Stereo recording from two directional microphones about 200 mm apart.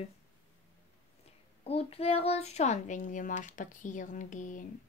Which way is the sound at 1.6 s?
30° left (ahead or behind).